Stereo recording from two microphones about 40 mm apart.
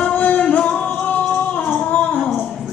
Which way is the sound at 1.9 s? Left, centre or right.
Left.